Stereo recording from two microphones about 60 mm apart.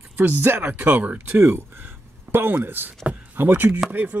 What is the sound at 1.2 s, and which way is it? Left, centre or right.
Speech, right.